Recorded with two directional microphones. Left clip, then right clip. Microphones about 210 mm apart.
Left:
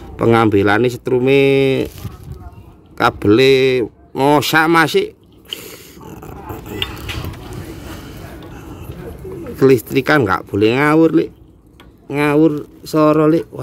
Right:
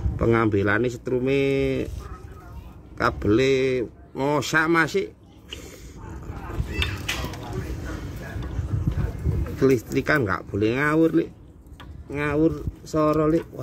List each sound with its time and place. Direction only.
0.2 s speech: 55° left (ahead or behind)
3.0 s speech: 50° left (ahead or behind)
9.6 s speech: 50° left (ahead or behind)